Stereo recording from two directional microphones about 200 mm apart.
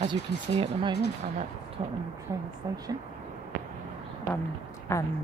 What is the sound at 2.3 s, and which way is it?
Speech, 10° right (ahead or behind).